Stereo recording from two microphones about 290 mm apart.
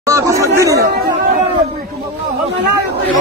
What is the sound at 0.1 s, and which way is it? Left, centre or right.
Chatter, centre.